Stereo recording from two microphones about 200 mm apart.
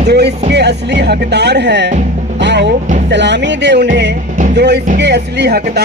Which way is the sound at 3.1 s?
60° right (ahead or behind).